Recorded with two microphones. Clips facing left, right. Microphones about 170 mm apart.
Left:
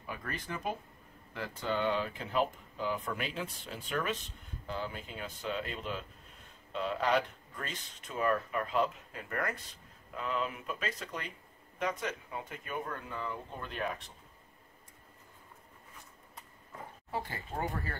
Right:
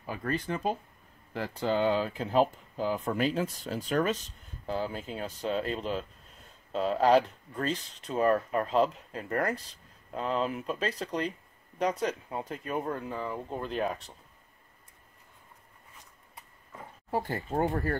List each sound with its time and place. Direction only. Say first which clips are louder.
0.0 s speech: right 9 dB; 30° right (ahead or behind)
17.1 s speech: right 8 dB; 45° right (ahead or behind)